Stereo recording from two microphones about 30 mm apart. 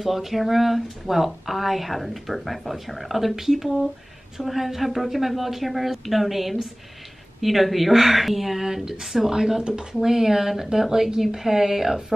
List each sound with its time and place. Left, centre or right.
0.0 s speech: centre
8.6 s speech: centre
9.3 s speech: centre